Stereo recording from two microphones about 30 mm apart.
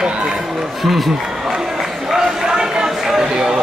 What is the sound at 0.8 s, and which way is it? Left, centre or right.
Speech, centre.